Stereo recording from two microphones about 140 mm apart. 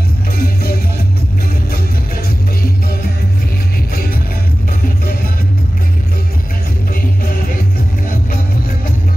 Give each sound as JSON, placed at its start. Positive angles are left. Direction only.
{"t": 0.4, "sound": "music", "side_deg": 90}
{"t": 2.2, "sound": "music", "side_deg": 90}
{"t": 7.2, "sound": "music", "side_deg": 90}